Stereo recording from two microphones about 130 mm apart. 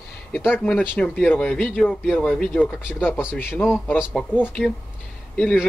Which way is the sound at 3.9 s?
5° right (ahead or behind).